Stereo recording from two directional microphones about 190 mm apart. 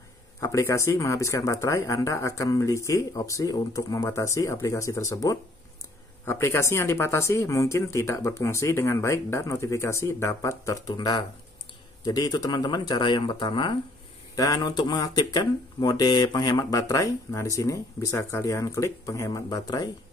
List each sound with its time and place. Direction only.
0.4 s speech: 15° left (ahead or behind)